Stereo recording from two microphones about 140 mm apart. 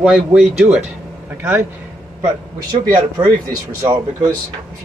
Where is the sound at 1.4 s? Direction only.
15° right (ahead or behind).